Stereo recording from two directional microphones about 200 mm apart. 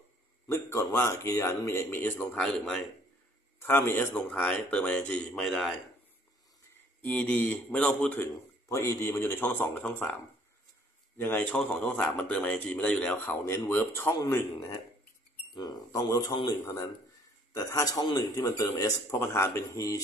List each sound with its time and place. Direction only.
0.5 s speech: 15° left (ahead or behind)
7.0 s speech: 5° left (ahead or behind)
11.1 s speech: 10° left (ahead or behind)
15.5 s speech: 20° left (ahead or behind)